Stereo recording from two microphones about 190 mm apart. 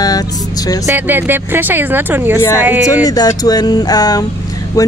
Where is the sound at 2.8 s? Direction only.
20° left (ahead or behind).